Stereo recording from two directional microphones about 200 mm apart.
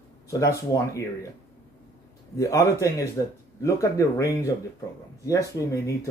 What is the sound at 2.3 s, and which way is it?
Speech, 15° left (ahead or behind).